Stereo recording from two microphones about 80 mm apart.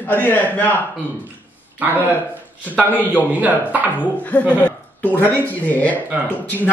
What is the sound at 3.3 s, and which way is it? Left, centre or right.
Speech, right.